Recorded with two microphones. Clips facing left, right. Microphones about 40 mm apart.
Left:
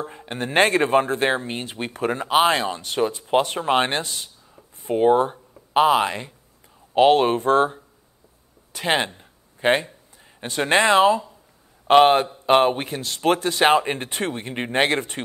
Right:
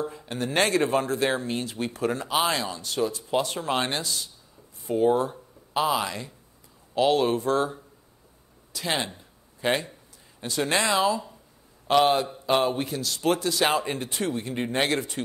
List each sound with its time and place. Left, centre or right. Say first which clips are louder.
0.0 s speech: left 1 dB; left